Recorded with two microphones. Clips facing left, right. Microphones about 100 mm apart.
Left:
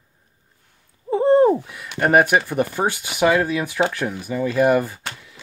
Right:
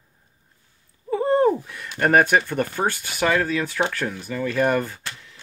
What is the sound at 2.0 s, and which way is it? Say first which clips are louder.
Speech: left 2 dB; 5° left (ahead or behind).